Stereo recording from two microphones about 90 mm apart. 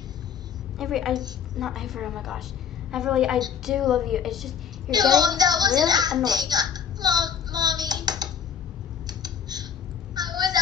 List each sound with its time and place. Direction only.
0.7 s a woman's voice: centre (ahead or behind)
1.1 s a woman's voice: 50° right (ahead or behind)
1.6 s a woman's voice: 5° right (ahead or behind)
4.9 s a woman's voice: 50° right (ahead or behind)
6.2 s a sound: 50° right (ahead or behind)
10.1 s vehicle: 50° right (ahead or behind)